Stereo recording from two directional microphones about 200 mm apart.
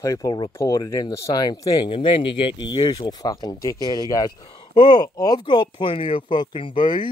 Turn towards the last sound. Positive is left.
turn(degrees=25)  # may be behind; listen again after turning